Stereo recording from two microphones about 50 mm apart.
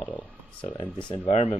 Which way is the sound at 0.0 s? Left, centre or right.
Left.